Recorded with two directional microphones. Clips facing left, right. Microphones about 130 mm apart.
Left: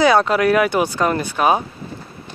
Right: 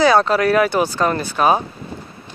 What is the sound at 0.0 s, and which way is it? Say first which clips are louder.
Speech: even; 35° right (ahead or behind).